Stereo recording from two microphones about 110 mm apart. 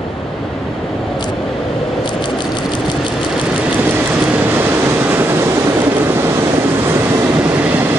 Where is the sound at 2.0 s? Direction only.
45° left (ahead or behind).